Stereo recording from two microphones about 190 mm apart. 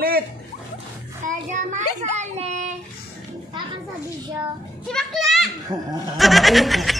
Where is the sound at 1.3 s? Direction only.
40° right (ahead or behind).